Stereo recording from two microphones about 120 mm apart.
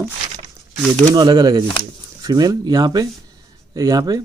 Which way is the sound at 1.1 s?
35° right (ahead or behind).